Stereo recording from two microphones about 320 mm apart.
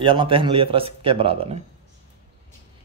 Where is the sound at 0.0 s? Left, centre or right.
Centre.